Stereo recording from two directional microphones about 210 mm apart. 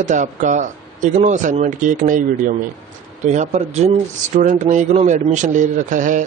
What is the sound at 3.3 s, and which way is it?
Speech, 30° right (ahead or behind).